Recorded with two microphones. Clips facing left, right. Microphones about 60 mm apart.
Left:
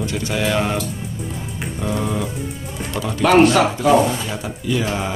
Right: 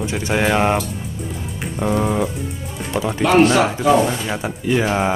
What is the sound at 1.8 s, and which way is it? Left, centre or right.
Speech, right.